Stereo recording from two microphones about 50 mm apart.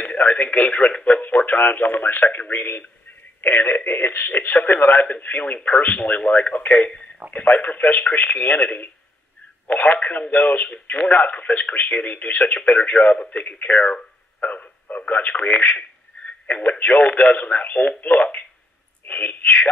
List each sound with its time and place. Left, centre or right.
0.0 s speech: left
16.3 s a sound: left
16.6 s speech: left
19.4 s speech: left